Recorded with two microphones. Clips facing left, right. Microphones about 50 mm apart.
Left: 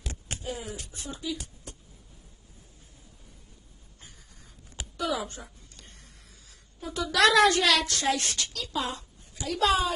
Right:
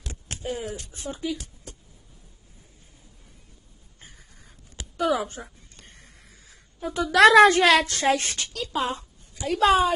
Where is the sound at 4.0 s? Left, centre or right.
Right.